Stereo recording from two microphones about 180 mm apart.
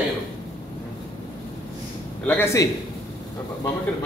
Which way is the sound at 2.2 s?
15° left (ahead or behind).